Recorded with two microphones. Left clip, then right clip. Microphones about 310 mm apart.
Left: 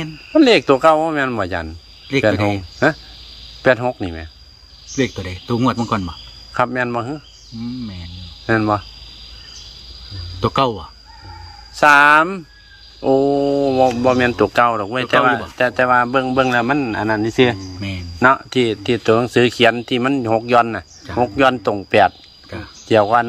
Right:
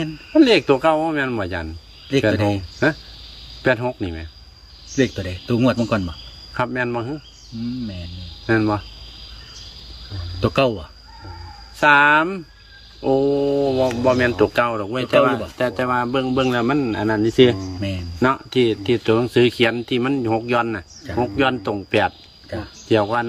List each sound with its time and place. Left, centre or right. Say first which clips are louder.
0.3 s speech: left 2 dB; centre
8.5 s speech: left 3 dB; centre
10.4 s speech: left 1 dB; centre